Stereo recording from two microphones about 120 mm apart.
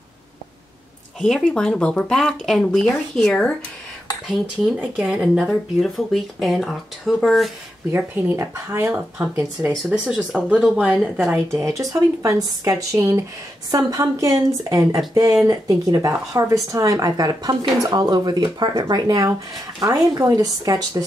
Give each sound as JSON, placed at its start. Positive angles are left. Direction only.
{"t": 1.2, "sound": "speech", "side_deg": 5}
{"t": 4.7, "sound": "speech", "side_deg": -10}
{"t": 7.9, "sound": "speech", "side_deg": -20}
{"t": 9.8, "sound": "speech", "side_deg": -10}
{"t": 11.3, "sound": "speech", "side_deg": -25}